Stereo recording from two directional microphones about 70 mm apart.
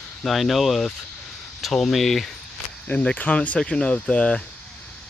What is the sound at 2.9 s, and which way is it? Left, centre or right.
Speech, centre.